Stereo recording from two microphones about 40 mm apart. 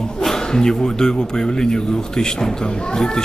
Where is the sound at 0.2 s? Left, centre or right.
Centre.